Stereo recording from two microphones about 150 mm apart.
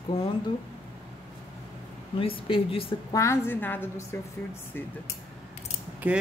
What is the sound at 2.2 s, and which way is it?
Speech, 35° left (ahead or behind).